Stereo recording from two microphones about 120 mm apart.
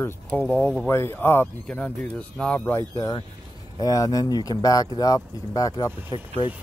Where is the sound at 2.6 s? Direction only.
20° left (ahead or behind).